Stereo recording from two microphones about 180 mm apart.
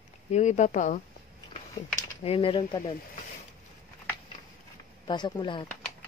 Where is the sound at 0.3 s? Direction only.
40° left (ahead or behind).